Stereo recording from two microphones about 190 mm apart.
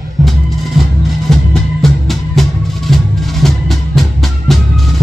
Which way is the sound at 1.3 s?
Centre (ahead or behind).